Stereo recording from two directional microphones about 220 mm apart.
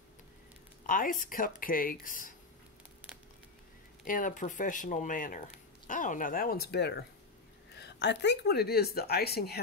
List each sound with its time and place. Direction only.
0.8 s speech: 35° left (ahead or behind)
4.0 s speech: 35° left (ahead or behind)